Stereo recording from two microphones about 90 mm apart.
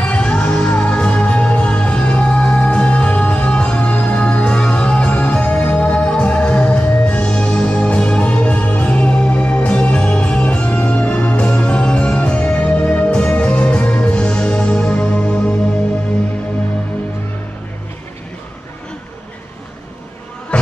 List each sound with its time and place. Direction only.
0.0 s music: 10° left (ahead or behind)